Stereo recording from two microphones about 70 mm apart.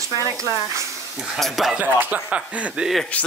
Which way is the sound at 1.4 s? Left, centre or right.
Centre.